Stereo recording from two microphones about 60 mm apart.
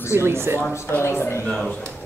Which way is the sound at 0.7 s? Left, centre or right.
Left.